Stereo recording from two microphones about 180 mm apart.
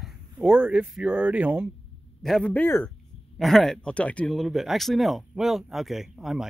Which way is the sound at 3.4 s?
Centre (ahead or behind).